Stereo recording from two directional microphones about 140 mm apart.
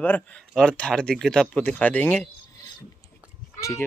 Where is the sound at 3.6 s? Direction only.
20° left (ahead or behind).